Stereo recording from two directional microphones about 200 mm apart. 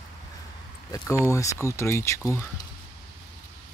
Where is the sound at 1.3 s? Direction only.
15° left (ahead or behind).